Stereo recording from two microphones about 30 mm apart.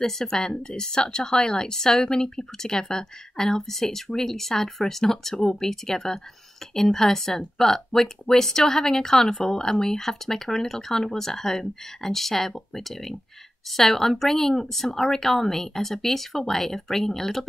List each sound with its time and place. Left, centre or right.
0.0 s speech: centre